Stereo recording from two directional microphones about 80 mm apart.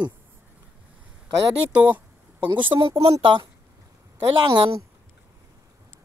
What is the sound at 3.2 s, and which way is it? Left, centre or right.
A woman's voice, right.